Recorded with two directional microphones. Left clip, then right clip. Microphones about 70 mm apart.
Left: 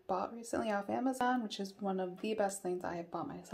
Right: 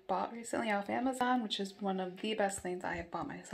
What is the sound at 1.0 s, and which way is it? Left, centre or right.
Speech, centre.